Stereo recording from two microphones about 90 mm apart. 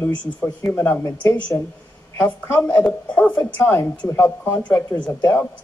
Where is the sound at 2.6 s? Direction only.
15° left (ahead or behind).